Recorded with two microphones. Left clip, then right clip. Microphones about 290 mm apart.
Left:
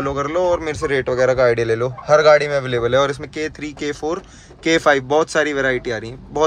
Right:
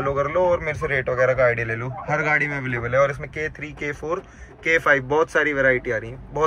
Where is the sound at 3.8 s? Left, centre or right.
Centre.